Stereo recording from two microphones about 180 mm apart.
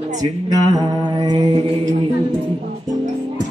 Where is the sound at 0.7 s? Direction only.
20° right (ahead or behind).